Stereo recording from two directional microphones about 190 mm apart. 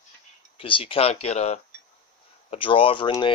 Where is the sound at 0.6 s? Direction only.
30° left (ahead or behind).